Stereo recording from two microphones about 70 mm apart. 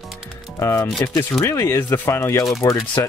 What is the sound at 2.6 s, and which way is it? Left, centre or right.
Speech, left.